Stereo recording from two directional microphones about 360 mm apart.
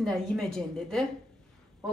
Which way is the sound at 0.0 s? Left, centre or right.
Centre.